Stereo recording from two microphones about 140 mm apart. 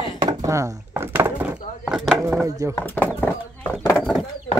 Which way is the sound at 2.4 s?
20° right (ahead or behind).